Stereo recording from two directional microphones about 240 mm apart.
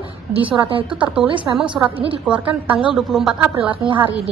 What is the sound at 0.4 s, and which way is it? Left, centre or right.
Speech, right.